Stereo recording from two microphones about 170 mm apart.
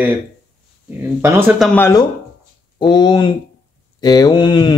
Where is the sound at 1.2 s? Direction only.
10° right (ahead or behind).